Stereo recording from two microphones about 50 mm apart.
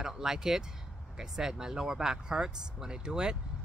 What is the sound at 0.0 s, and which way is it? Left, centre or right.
Speech, centre.